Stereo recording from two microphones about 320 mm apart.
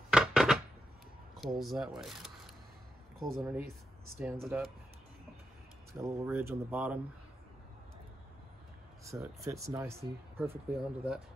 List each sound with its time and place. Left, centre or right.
0.1 s a sound: centre
1.3 s speech: centre
5.9 s speech: centre
9.0 s speech: centre